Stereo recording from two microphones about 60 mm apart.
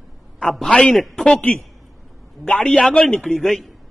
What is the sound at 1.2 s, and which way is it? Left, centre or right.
A man's voice, left.